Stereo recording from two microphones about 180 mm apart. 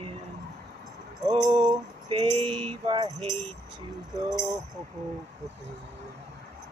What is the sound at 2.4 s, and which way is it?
Speech, 30° right (ahead or behind).